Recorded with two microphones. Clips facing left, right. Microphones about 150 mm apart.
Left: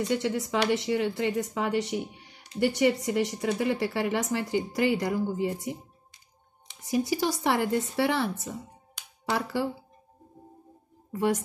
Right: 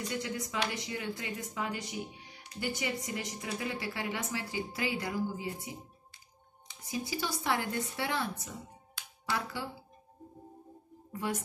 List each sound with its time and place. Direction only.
0.1 s speech: 70° left (ahead or behind)
6.9 s speech: 70° left (ahead or behind)
11.1 s speech: 70° left (ahead or behind)